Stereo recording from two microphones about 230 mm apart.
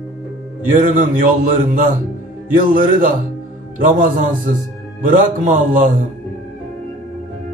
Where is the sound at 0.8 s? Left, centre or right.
Right.